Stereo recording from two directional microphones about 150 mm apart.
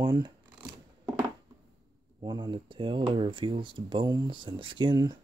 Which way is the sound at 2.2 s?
30° right (ahead or behind).